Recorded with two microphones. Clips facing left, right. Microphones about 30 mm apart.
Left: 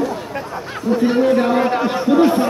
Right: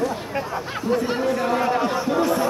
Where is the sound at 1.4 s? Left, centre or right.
Left.